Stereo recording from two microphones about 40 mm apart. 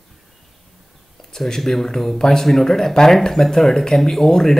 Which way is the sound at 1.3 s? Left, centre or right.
Centre.